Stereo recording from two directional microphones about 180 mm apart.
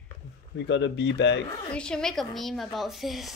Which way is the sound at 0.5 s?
85° left.